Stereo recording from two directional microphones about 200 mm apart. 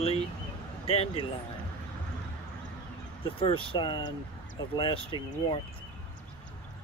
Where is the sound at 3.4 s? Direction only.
25° left (ahead or behind).